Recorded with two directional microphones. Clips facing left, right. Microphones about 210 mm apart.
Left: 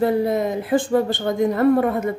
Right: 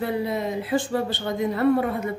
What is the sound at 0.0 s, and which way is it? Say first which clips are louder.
A woman's voice: left 7 dB; 45° left (ahead or behind).